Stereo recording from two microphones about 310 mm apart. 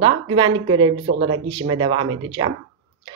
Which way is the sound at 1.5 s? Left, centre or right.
Centre.